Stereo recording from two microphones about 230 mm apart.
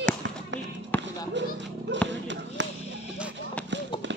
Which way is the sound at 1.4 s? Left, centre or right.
Right.